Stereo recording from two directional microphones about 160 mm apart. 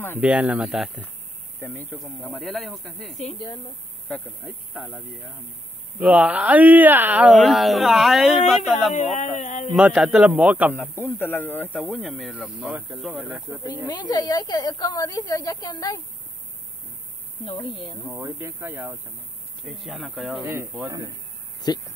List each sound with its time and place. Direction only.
0.2 s speech: 10° right (ahead or behind)
1.6 s speech: 10° left (ahead or behind)
2.0 s speech: centre (ahead or behind)
4.5 s speech: 10° right (ahead or behind)
8.9 s speech: 50° left (ahead or behind)
9.8 s speech: 5° right (ahead or behind)
10.7 s speech: 10° left (ahead or behind)
13.3 s speech: 10° right (ahead or behind)
13.8 s a woman's voice: 25° left (ahead or behind)
17.5 s a woman's voice: 30° left (ahead or behind)
18.1 s speech: 15° right (ahead or behind)
19.6 s speech: centre (ahead or behind)
20.8 s speech: 25° right (ahead or behind)
21.5 s speech: 25° left (ahead or behind)